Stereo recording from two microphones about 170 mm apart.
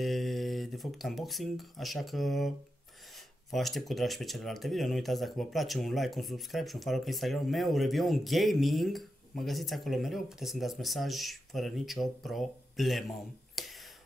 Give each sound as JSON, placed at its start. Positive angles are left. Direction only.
{"t": 0.0, "sound": "speech", "side_deg": 0}
{"t": 3.5, "sound": "speech", "side_deg": 0}
{"t": 13.6, "sound": "a sound", "side_deg": 0}